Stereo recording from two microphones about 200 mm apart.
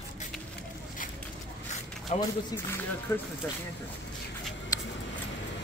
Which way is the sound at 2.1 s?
35° left (ahead or behind).